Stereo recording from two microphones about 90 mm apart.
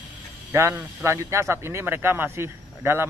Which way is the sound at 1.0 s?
35° right (ahead or behind).